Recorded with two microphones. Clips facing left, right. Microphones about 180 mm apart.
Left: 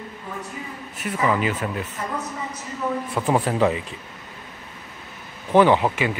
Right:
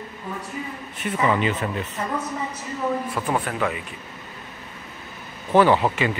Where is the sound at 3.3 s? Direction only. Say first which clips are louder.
Left 6 dB; 30° left (ahead or behind).